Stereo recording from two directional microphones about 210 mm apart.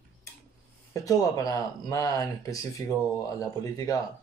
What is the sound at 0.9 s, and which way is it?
Speech, 15° left (ahead or behind).